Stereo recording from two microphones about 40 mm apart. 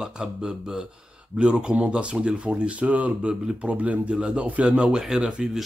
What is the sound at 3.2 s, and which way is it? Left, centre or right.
Speech, right.